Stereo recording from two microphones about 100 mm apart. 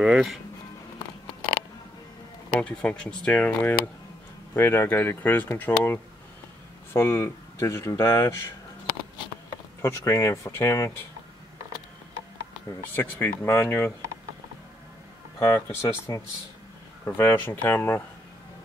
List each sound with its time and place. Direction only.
0.0 s speech: 5° right (ahead or behind)
2.5 s speech: 10° left (ahead or behind); by 8.5 s 30° left (ahead or behind)
9.8 s speech: 30° left (ahead or behind)
12.9 s speech: 20° left (ahead or behind)
15.3 s speech: 25° left (ahead or behind)